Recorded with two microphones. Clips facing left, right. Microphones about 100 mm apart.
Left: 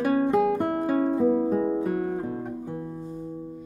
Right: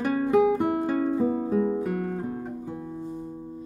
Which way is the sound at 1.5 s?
20° left (ahead or behind).